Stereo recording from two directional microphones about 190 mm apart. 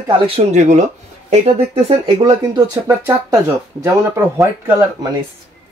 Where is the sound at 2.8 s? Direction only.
15° right (ahead or behind).